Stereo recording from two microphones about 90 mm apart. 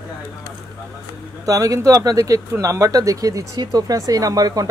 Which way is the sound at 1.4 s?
40° right (ahead or behind).